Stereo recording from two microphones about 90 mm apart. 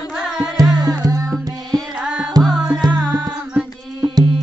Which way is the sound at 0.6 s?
45° right (ahead or behind).